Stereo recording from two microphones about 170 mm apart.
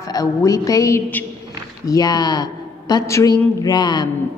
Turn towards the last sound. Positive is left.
turn(degrees=25)  # may be behind; listen again after turning